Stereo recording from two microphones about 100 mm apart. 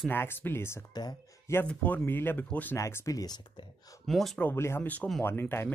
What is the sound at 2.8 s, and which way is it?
Speech, 30° left (ahead or behind).